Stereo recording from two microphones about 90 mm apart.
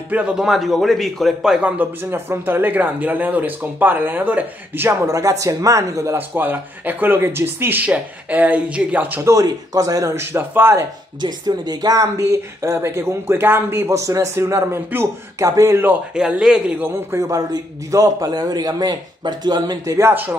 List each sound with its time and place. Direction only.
0.1 s a man's voice: 10° right (ahead or behind)
1.8 s speech: 25° right (ahead or behind)
6.1 s speech: 20° right (ahead or behind)
9.2 s speech: 35° right (ahead or behind)
11.1 s speech: 50° right (ahead or behind)
16.2 s a man's voice: 10° right (ahead or behind)
16.8 s a man's voice: 30° right (ahead or behind); by 20.0 s 50° right (ahead or behind)
20.0 s speech: 25° right (ahead or behind)